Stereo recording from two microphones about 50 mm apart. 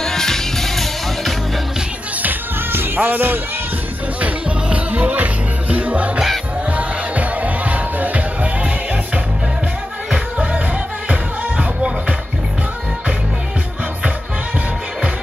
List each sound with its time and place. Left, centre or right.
0.0 s music: centre
2.2 s music: right
4.2 s music: right